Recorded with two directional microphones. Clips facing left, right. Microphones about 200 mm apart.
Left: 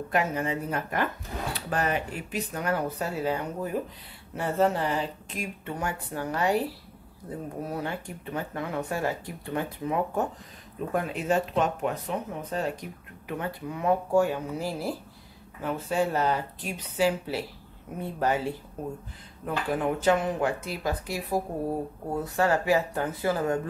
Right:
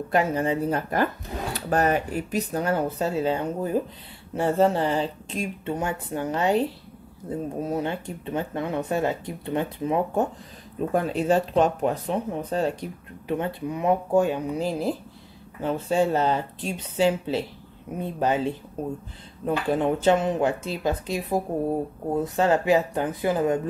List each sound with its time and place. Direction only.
0.1 s speech: 30° right (ahead or behind)